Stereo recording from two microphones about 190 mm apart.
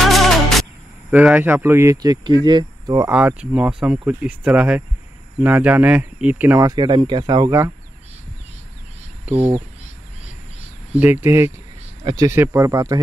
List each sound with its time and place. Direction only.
0.0 s music: centre (ahead or behind)
1.1 s speech: 5° right (ahead or behind); by 3.1 s 25° right (ahead or behind)
3.1 s speech: 5° right (ahead or behind)
9.3 s speech: 30° right (ahead or behind)
11.0 s speech: 10° right (ahead or behind)